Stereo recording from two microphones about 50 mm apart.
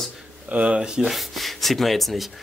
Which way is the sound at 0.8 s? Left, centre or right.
Centre.